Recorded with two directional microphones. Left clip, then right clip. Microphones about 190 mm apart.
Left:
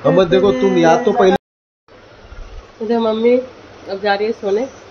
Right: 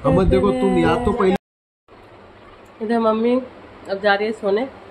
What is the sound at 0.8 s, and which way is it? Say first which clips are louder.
Speech: left 6 dB; 90° right.